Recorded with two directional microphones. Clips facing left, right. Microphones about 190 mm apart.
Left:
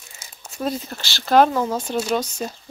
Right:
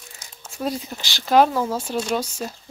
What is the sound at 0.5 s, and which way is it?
Speech, 10° right (ahead or behind).